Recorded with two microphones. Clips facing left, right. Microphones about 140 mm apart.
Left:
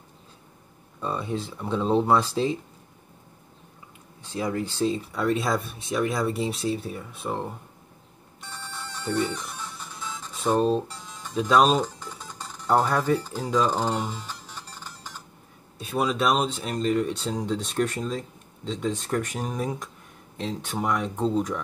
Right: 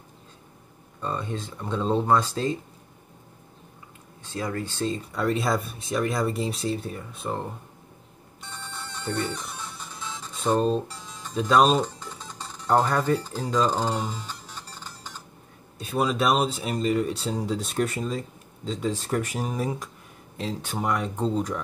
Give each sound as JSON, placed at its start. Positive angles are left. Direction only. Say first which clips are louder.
{"t": 1.0, "sound": "speech", "louder": "left 2 dB", "side_deg": 5}
{"t": 4.2, "sound": "speech", "louder": "left 2 dB", "side_deg": 15}
{"t": 9.0, "sound": "speech", "louder": "left 3 dB", "side_deg": 5}
{"t": 13.8, "sound": "music", "louder": "even", "side_deg": 5}
{"t": 15.8, "sound": "speech", "louder": "even", "side_deg": 0}